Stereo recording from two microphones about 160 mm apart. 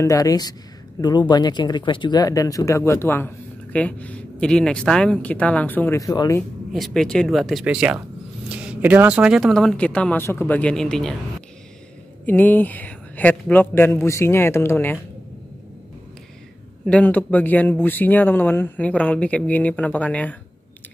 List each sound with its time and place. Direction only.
0.0 s speech: 20° left (ahead or behind)
6.7 s speech: centre (ahead or behind)
12.3 s speech: 10° left (ahead or behind)
16.8 s speech: 10° left (ahead or behind)